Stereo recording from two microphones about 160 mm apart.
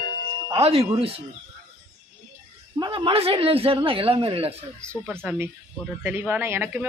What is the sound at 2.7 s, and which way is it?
A woman's voice, 30° right (ahead or behind).